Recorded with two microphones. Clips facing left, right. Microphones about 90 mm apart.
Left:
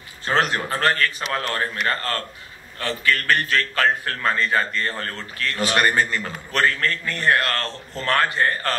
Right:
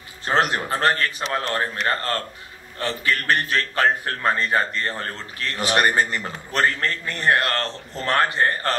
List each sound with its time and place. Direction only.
0.2 s a man's voice: 20° right (ahead or behind)